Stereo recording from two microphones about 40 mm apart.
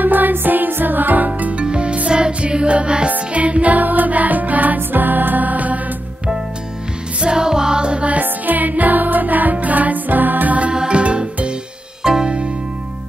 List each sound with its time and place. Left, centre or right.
0.0 s music: right
1.6 s music: right
7.2 s music: right
8.1 s music: right
10.6 s music: right
12.0 s music: centre